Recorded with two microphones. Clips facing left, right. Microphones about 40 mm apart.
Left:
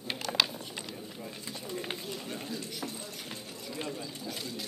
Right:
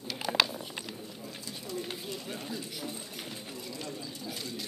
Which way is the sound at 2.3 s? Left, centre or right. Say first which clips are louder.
Even; centre.